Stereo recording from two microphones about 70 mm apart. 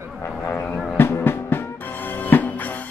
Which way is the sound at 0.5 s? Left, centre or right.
Left.